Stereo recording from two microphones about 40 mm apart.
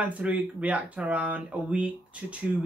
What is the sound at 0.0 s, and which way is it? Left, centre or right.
Speech, right.